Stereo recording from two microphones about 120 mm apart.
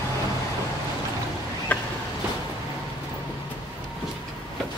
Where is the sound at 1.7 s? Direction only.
10° left (ahead or behind).